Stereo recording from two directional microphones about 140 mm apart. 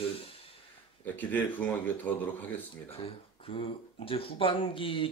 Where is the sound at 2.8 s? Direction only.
40° left (ahead or behind).